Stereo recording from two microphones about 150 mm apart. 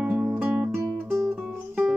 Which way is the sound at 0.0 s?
5° right (ahead or behind).